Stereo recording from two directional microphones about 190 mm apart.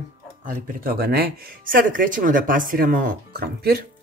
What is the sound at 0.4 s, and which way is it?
Speech, 45° right (ahead or behind).